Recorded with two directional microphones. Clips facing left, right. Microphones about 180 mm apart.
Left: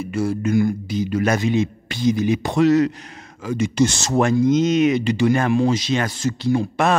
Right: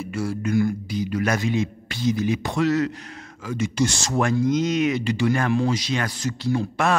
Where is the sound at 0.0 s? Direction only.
20° left (ahead or behind).